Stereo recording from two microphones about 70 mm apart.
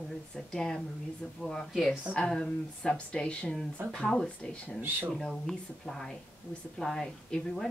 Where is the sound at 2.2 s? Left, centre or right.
Centre.